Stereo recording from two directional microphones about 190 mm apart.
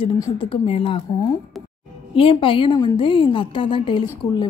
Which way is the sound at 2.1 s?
30° left (ahead or behind).